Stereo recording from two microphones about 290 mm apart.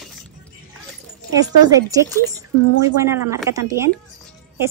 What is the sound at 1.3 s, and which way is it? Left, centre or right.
A woman's voice, centre.